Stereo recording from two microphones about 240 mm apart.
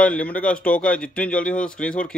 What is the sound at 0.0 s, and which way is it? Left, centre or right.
A man's voice, centre.